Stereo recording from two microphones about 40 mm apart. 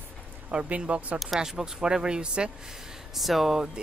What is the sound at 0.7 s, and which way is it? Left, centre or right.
Speech, right.